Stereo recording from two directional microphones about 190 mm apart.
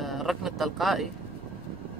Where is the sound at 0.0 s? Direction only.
Centre (ahead or behind).